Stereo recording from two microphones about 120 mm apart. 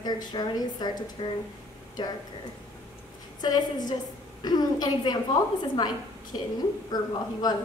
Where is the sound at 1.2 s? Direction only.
50° left (ahead or behind).